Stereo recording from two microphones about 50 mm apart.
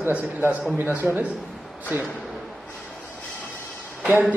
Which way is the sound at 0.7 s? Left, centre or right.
Right.